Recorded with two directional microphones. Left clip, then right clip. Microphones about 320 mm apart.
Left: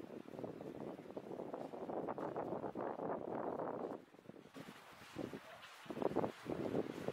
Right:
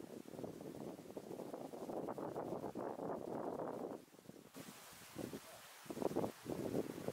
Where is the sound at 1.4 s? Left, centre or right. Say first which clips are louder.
Left 2 dB; centre.